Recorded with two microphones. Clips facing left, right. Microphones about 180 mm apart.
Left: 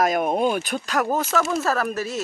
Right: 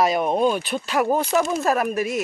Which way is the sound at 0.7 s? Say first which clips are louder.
Right 2 dB; 10° right (ahead or behind).